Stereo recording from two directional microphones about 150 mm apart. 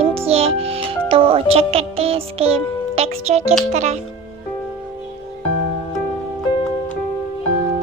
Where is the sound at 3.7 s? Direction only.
50° right (ahead or behind).